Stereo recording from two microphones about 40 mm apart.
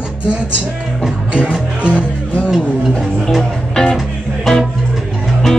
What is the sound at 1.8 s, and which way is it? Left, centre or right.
Music, right.